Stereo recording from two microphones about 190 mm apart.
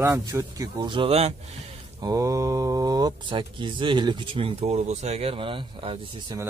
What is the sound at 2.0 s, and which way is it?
Speech, 15° right (ahead or behind).